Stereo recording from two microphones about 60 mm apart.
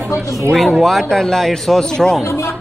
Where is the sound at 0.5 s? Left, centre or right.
Centre.